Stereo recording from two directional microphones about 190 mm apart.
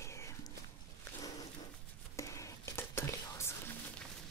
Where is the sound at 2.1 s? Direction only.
15° left (ahead or behind).